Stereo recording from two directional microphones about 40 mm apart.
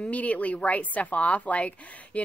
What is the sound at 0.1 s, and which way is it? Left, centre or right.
A woman's voice, left.